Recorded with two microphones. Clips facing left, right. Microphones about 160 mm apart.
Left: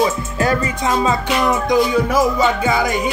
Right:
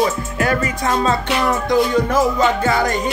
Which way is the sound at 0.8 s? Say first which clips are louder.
Left 1 dB; 15° left (ahead or behind).